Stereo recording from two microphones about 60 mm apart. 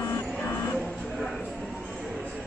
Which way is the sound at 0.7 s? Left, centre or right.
Centre.